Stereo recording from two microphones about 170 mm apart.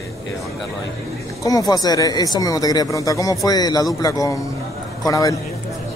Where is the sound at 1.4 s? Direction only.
20° left (ahead or behind).